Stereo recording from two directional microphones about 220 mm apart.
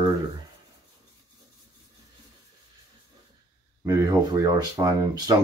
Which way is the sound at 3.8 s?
15° right (ahead or behind).